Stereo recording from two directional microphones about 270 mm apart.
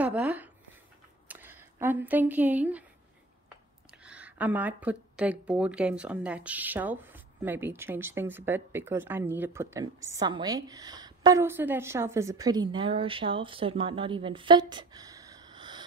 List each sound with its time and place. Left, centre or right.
0.0 s speech: centre
4.0 s speech: centre